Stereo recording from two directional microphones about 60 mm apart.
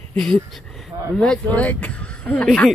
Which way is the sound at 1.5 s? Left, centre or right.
Left.